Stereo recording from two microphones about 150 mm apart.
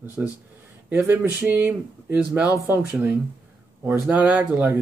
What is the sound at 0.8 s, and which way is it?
Speech, 15° right (ahead or behind).